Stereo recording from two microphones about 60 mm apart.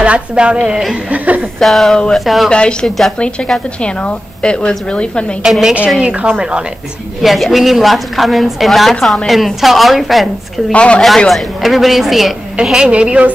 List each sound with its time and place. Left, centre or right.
0.0 s speech: centre
1.1 s speech: right
1.6 s a woman's voice: centre
2.5 s a woman's voice: centre
5.4 s speech: centre
7.2 s a woman's voice: centre
10.7 s speech: centre
11.2 s a woman's voice: centre
12.6 s speech: centre